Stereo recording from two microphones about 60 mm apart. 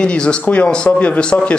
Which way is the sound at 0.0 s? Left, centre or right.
Centre.